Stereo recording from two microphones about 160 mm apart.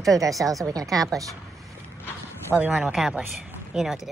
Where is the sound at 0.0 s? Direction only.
20° right (ahead or behind).